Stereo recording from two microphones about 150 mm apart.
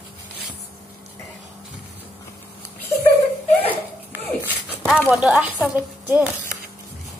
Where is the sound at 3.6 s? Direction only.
10° right (ahead or behind).